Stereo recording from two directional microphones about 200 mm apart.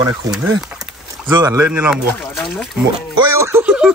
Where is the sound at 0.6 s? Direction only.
Centre (ahead or behind).